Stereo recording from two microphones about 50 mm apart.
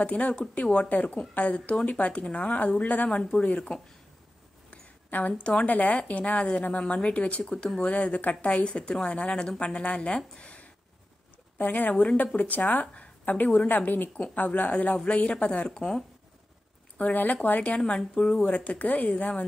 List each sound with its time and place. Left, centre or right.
0.0 s speech: left
4.6 s a sound: left
5.7 s speech: left
10.3 s a sound: left
11.5 s a woman's voice: left
15.7 s speech: centre
17.0 s speech: left